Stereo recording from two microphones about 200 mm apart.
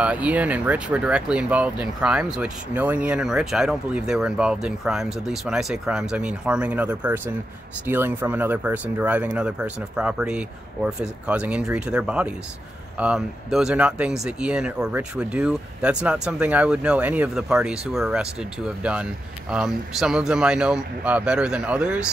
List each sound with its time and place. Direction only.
0.0 s speech: 5° right (ahead or behind)